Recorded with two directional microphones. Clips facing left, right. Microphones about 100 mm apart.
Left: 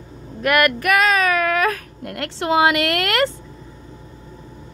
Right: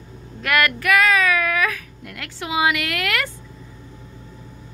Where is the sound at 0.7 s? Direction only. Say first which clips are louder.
Left 1 dB; 30° left (ahead or behind); by 2.8 s 50° left (ahead or behind).